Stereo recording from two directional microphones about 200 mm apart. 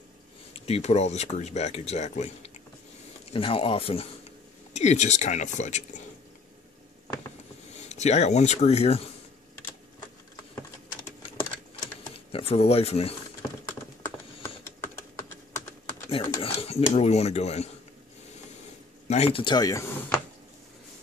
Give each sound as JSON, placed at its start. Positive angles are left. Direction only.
{"t": 0.5, "sound": "speech", "side_deg": 30}
{"t": 7.7, "sound": "speech", "side_deg": 35}
{"t": 11.8, "sound": "a sound", "side_deg": 30}
{"t": 14.8, "sound": "typing", "side_deg": 10}
{"t": 16.1, "sound": "a sound", "side_deg": 30}
{"t": 16.9, "sound": "speech", "side_deg": 30}
{"t": 19.0, "sound": "speech", "side_deg": 30}